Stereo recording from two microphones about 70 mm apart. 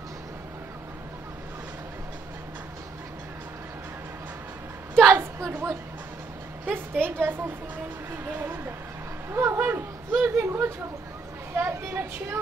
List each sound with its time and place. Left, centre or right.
5.1 s speech: right
6.6 s a woman's voice: right
9.3 s speech: right
9.7 s a man's voice: right
10.3 s speech: right